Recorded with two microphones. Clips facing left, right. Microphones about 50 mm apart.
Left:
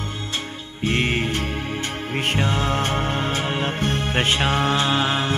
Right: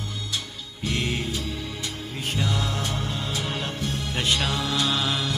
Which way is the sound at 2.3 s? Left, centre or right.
Left.